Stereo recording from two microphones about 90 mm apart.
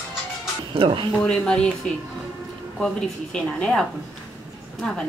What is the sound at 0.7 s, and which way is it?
Speech, 75° right (ahead or behind).